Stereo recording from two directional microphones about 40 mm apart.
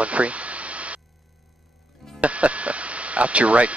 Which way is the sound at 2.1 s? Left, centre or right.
Right.